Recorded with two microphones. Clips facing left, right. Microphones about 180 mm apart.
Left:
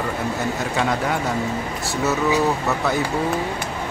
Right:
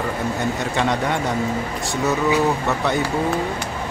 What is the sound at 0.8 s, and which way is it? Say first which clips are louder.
Speech: right 1 dB; 5° left (ahead or behind).